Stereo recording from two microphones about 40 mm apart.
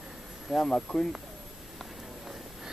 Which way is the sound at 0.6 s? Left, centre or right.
Left.